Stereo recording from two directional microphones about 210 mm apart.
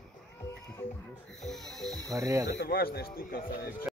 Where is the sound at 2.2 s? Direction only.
15° right (ahead or behind).